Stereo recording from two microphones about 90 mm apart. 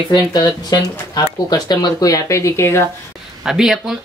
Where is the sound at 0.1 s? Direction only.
50° left (ahead or behind); by 2.8 s 30° left (ahead or behind).